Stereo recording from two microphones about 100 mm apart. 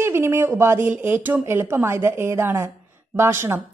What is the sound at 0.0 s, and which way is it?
A woman's voice, 25° right (ahead or behind).